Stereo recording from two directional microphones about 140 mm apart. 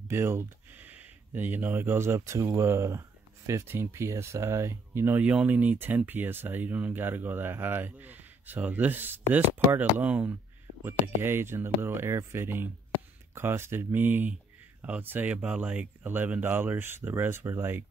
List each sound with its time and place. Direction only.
0.1 s speech: 15° right (ahead or behind)